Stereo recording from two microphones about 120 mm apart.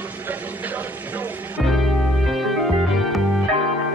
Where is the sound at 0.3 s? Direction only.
15° right (ahead or behind).